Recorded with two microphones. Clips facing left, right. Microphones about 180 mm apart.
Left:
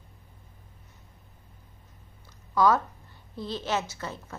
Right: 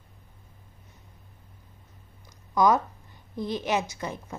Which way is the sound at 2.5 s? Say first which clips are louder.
Right 1 dB; 15° right (ahead or behind).